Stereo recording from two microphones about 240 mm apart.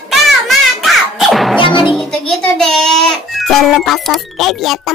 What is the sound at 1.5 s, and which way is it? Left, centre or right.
Music, left.